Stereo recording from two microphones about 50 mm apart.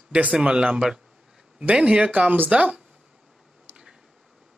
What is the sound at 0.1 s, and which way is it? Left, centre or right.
Speech, right.